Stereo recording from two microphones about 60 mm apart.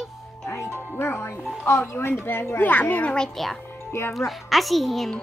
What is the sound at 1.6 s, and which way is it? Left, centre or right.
A child's voice, left.